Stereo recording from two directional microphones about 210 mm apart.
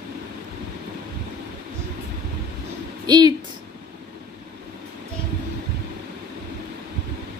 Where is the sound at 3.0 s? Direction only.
20° right (ahead or behind).